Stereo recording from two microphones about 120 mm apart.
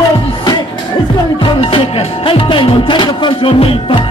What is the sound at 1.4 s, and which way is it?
Music, 45° left (ahead or behind).